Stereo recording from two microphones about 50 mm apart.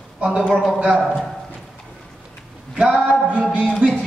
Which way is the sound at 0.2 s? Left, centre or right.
Centre.